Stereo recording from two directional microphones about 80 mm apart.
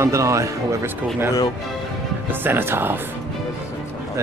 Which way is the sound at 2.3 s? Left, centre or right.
Right.